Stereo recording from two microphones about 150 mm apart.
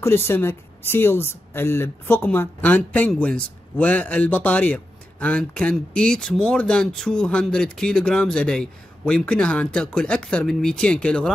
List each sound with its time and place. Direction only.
0.0 s speech: 15° left (ahead or behind)